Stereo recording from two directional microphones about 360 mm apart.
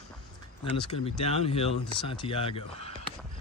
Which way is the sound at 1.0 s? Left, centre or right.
Centre.